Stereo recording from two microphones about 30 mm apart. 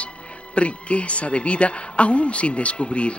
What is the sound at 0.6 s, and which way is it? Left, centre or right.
A man's voice, left.